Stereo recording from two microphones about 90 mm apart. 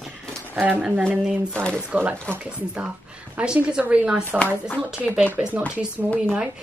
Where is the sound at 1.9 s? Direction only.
20° right (ahead or behind).